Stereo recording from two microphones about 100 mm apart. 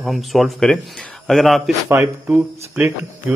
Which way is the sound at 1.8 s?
30° right (ahead or behind).